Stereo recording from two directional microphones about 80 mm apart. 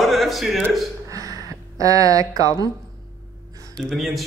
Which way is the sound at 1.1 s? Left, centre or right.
Right.